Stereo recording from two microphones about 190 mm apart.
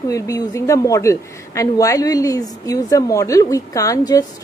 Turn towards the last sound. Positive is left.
turn(degrees=20)  # may be behind; listen again after turning